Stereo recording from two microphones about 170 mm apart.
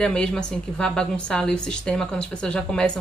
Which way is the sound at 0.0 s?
5° left (ahead or behind).